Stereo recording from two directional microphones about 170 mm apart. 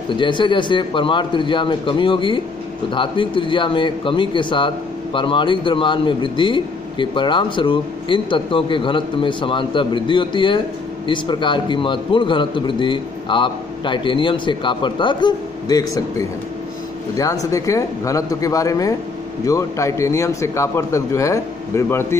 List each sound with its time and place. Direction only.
0.1 s a man's voice: 30° left (ahead or behind)